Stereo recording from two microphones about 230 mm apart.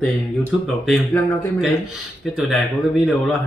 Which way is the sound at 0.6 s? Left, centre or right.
Centre.